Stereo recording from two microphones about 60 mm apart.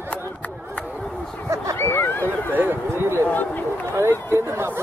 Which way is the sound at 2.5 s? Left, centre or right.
Right.